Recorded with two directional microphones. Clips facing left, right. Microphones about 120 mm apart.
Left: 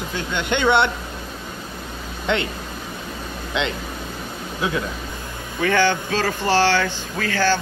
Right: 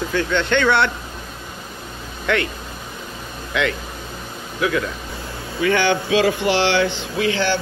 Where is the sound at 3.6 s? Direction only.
25° left (ahead or behind).